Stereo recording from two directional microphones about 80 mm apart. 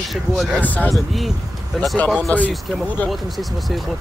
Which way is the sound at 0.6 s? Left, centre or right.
Left.